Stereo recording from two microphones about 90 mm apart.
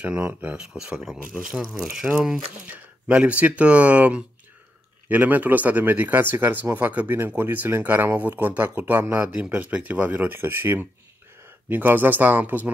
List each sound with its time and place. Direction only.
0.2 s speech: 20° right (ahead or behind)
0.6 s speech: 5° right (ahead or behind)
1.3 s speech: 15° right (ahead or behind)